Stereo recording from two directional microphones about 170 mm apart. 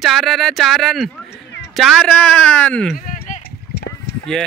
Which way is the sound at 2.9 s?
50° left (ahead or behind).